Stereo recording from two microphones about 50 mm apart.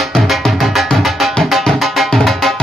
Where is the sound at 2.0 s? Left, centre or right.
Centre.